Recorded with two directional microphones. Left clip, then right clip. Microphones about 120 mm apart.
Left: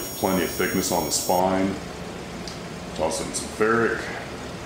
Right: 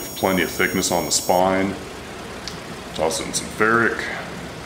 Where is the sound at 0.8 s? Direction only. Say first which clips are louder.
Right 3 dB; 40° right (ahead or behind).